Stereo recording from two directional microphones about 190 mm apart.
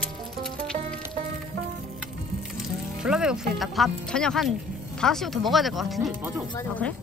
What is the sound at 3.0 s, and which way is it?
Speech, 5° right (ahead or behind).